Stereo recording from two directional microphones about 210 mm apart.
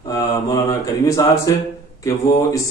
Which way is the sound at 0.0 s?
15° left (ahead or behind).